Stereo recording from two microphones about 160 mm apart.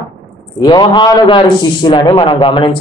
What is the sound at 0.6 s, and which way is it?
A man's voice, 25° left (ahead or behind).